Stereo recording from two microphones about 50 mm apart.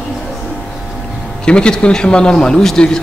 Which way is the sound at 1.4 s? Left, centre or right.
Centre.